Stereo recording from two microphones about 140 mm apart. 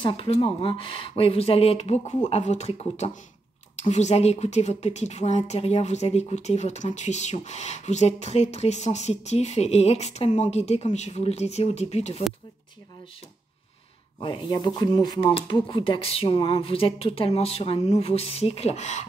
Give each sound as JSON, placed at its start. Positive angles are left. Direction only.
{"t": 0.3, "sound": "a woman's voice", "side_deg": 40}
{"t": 14.2, "sound": "a woman's voice", "side_deg": 35}